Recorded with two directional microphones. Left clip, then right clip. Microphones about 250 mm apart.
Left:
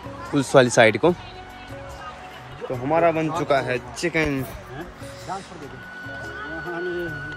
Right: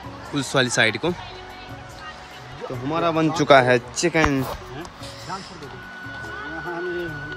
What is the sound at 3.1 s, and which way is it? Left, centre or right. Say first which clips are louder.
Speech: right 6 dB; right.